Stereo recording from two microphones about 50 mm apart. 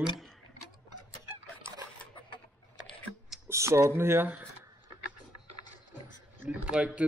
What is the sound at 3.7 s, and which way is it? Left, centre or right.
Speech, right.